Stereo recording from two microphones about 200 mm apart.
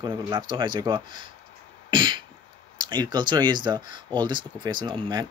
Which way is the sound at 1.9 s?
25° right (ahead or behind).